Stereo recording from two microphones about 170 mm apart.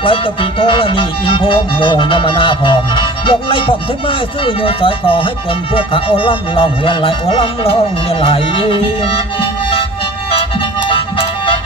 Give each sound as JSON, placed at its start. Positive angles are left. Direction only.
{"t": 0.0, "sound": "music", "side_deg": 30}